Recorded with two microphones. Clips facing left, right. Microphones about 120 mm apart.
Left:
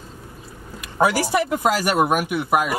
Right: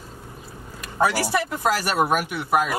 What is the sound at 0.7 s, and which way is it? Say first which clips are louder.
Speech: left 3 dB; 10° left (ahead or behind).